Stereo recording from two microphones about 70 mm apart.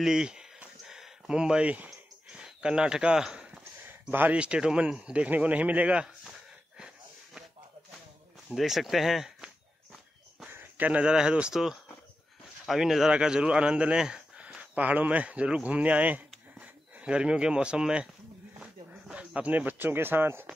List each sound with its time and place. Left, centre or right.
0.0 s a sound: centre
4.1 s speech: right
4.4 s speech: centre
8.5 s speech: centre
10.8 s speech: centre
18.6 s a sound: centre; by 20.4 s right